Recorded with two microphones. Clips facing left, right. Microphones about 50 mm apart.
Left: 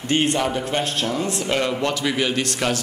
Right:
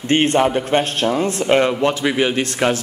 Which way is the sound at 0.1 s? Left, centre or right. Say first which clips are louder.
Right 5 dB; right.